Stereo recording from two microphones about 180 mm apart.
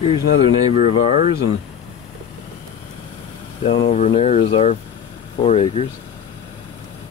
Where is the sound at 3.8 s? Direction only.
40° left (ahead or behind).